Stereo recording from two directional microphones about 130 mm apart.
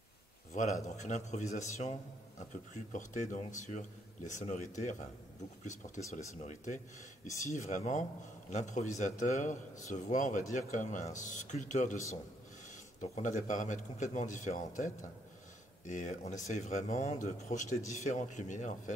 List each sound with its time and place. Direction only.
0.5 s a man's voice: 65° left (ahead or behind)
6.1 s speech: 65° left (ahead or behind)
13.0 s speech: 70° left (ahead or behind)